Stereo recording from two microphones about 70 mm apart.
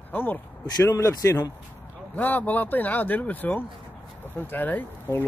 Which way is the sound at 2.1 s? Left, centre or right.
Left.